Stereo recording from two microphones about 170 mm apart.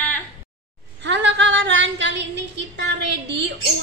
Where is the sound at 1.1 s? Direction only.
90° right.